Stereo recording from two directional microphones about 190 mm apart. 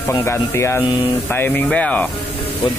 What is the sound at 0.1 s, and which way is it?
Rub, 15° left (ahead or behind).